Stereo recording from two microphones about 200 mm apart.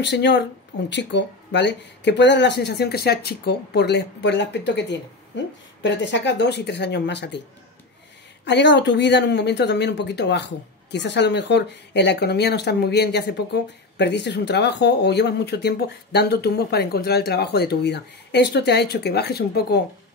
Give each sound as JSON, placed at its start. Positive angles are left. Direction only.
{"t": 0.0, "sound": "speech", "side_deg": 60}
{"t": 8.5, "sound": "speech", "side_deg": 60}